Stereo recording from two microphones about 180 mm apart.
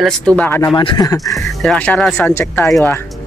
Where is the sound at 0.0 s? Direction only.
5° left (ahead or behind).